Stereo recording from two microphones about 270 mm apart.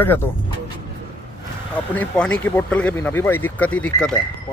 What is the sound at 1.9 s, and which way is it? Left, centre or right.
Speech, centre.